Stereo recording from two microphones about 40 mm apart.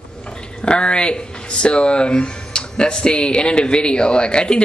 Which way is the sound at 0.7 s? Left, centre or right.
Left.